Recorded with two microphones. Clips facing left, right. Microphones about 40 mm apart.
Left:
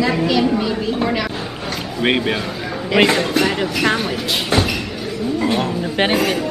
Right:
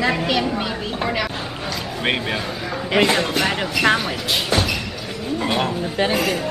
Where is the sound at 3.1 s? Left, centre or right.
Centre.